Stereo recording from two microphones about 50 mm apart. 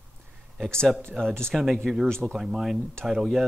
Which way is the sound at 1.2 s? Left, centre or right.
Centre.